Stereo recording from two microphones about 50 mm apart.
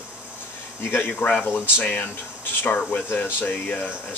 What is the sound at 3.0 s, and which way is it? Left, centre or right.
Speech, left.